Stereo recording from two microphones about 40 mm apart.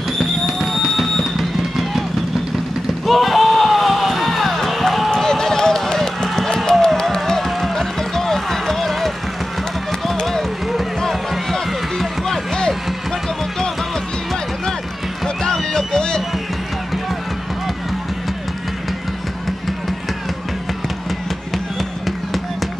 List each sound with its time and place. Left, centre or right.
0.2 s music: centre
3.1 s music: centre
5.1 s basketball bounce: centre
7.2 s music: centre
11.0 s run: centre
15.2 s run: centre